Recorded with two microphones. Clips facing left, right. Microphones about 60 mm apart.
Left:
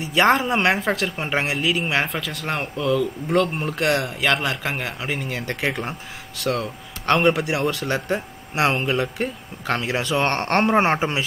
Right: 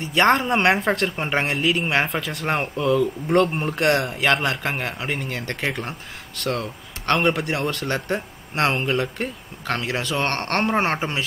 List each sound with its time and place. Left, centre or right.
0.1 s a man's voice: centre
10.3 s speech: centre